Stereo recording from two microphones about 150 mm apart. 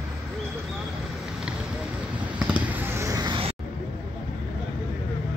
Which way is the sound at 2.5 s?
10° right (ahead or behind).